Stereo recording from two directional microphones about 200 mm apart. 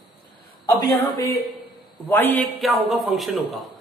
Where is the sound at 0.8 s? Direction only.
15° left (ahead or behind).